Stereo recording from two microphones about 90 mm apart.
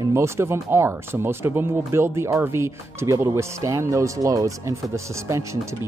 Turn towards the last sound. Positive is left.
turn(degrees=-35)  # may be behind; listen again after turning